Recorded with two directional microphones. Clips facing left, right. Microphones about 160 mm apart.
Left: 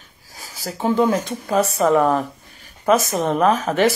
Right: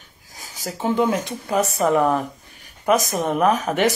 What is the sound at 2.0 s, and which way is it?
Speech, 20° left (ahead or behind).